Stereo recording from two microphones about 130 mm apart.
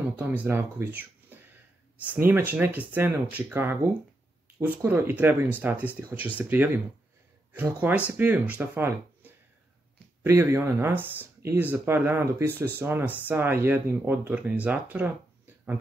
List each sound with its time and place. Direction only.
0.2 s speech: 15° right (ahead or behind)